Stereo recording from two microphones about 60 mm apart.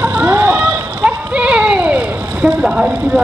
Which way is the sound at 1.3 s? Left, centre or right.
Centre.